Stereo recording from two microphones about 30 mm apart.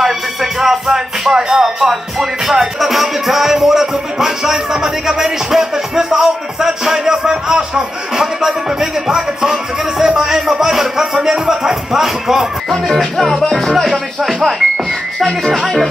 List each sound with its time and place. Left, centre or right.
0.0 s music: centre
12.8 s music: centre
14.2 s music: centre